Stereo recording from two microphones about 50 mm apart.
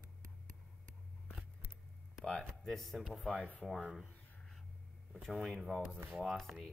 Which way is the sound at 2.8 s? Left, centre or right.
Centre.